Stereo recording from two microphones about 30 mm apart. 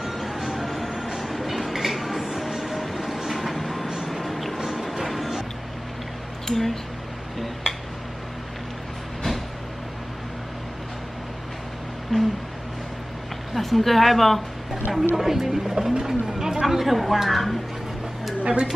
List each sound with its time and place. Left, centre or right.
0.0 s a sound: centre
1.3 s train: centre
4.6 s a sound: centre
4.8 s music: centre
6.4 s speech: centre
7.3 s a sound: centre
12.1 s a sound: left
13.6 s a woman's voice: centre
14.7 s speech: centre
15.9 s bird: centre
16.6 s a woman's voice: centre
18.4 s speech: right